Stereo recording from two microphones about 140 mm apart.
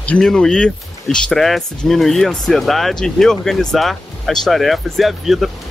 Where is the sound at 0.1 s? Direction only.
5° left (ahead or behind).